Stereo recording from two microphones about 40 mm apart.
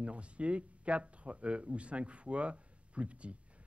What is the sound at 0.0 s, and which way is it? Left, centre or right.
Speech, right.